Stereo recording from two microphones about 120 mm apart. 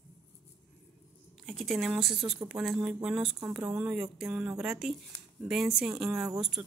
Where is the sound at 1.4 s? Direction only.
Centre (ahead or behind).